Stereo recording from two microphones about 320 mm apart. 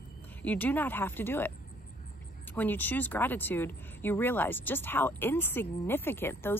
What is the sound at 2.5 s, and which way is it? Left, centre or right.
Speech, centre.